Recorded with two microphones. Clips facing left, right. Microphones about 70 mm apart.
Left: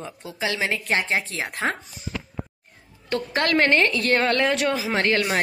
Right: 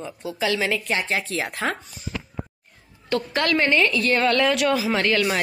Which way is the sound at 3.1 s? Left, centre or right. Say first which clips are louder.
Even; left.